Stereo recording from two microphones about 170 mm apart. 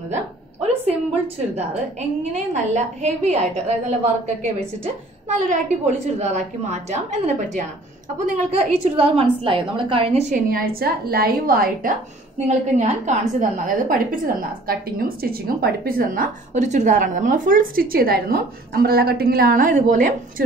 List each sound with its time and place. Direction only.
0.1 s a woman's voice: 40° right (ahead or behind)
2.0 s a woman's voice: 45° right (ahead or behind)
10.8 s a woman's voice: 65° right (ahead or behind)
12.4 s a woman's voice: 40° right (ahead or behind)